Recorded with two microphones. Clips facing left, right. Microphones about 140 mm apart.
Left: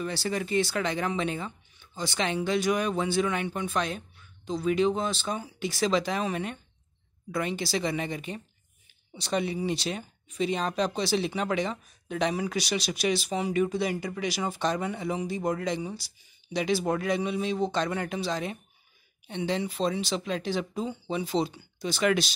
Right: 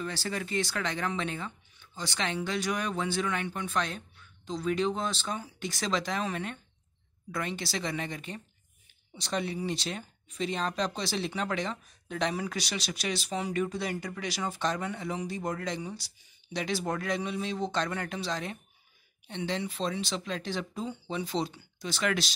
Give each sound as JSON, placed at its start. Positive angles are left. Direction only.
{"t": 0.0, "sound": "speech", "side_deg": 20}